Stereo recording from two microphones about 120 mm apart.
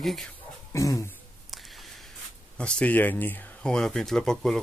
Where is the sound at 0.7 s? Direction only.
25° left (ahead or behind).